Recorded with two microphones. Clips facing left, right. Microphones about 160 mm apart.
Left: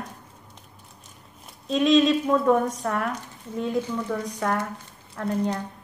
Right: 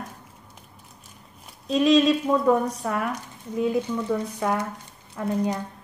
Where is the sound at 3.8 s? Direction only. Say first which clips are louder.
Right 2 dB; 15° right (ahead or behind).